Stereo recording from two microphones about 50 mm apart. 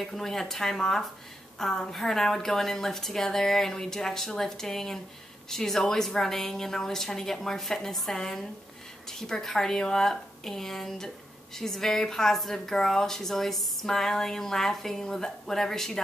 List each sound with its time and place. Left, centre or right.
0.0 s speech: centre